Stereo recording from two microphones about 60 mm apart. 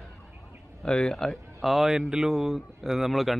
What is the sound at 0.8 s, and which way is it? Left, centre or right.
Speech, centre.